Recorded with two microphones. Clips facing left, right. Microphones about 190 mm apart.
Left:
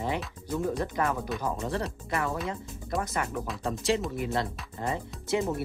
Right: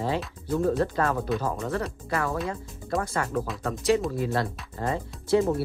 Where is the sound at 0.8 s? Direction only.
15° left (ahead or behind).